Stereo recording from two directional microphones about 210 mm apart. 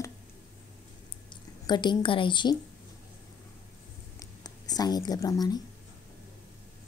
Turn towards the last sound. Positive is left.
turn(degrees=20)  # may be behind; listen again after turning